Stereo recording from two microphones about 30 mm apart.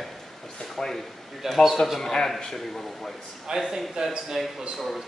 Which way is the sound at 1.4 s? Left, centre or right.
Centre.